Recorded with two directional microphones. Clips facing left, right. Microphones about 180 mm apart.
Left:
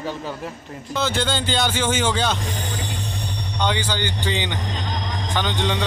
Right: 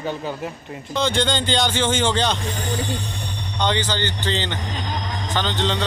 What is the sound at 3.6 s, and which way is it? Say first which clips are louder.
Speech: right 1 dB; 10° left (ahead or behind).